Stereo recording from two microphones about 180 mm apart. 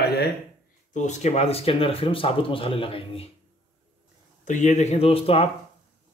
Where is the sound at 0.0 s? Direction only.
65° left (ahead or behind).